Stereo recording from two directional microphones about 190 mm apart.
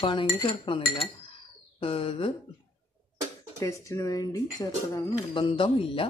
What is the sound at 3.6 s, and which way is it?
Speech, 15° left (ahead or behind).